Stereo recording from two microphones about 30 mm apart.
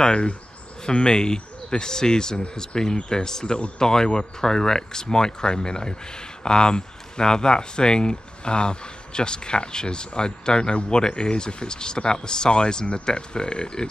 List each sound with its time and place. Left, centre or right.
0.0 s speech: left